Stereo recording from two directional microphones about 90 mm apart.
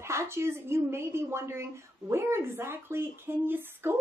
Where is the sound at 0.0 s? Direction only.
30° right (ahead or behind).